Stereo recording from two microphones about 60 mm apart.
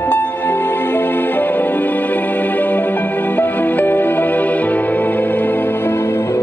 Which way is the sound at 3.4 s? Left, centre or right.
Left.